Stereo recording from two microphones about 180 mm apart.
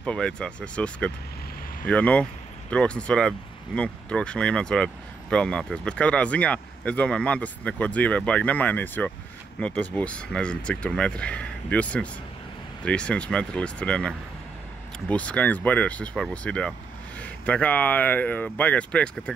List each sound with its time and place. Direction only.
0.0 s speech: 5° left (ahead or behind)